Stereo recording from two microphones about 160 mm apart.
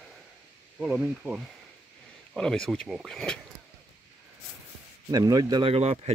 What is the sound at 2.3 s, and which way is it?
Speech, 5° left (ahead or behind).